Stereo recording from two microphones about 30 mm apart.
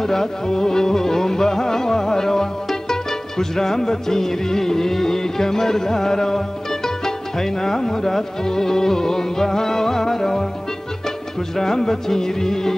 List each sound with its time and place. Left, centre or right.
0.0 s music: centre
11.5 s music: centre